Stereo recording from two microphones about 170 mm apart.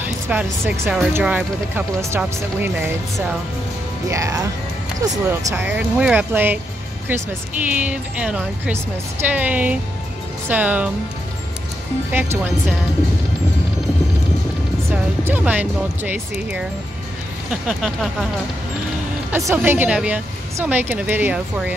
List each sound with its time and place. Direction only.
0.0 s a woman's voice: 10° right (ahead or behind)
4.1 s a woman's voice: 20° right (ahead or behind)
7.7 s a woman's voice: 10° right (ahead or behind)
12.1 s a woman's voice: 10° right (ahead or behind)
14.9 s a woman's voice: 10° right (ahead or behind)
19.3 s a woman's voice: 15° right (ahead or behind)